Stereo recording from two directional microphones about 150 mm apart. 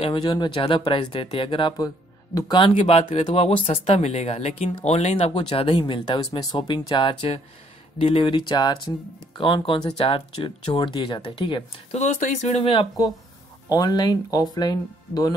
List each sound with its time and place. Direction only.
0.0 s speech: 35° left (ahead or behind)
2.7 s speech: 50° left (ahead or behind)
3.0 s speech: 40° left (ahead or behind)
12.0 s speech: 50° left (ahead or behind)
13.7 s speech: 25° left (ahead or behind)